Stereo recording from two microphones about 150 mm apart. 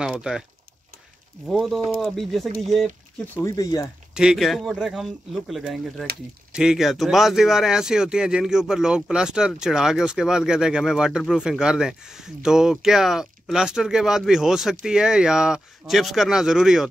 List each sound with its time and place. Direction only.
0.0 s speech: 5° right (ahead or behind)
1.5 s speech: centre (ahead or behind)
3.4 s speech: 25° left (ahead or behind)
4.1 s speech: 5° right (ahead or behind)